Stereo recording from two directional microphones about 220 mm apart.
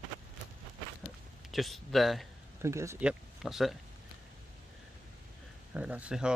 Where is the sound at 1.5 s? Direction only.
Centre (ahead or behind).